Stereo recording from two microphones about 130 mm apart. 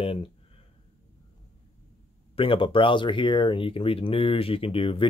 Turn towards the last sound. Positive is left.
turn(degrees=45)  # may be behind; listen again after turning